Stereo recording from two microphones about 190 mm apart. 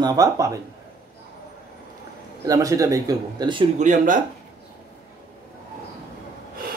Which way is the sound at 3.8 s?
45° right (ahead or behind).